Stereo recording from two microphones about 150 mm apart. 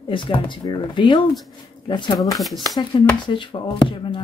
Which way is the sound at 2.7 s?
30° left (ahead or behind).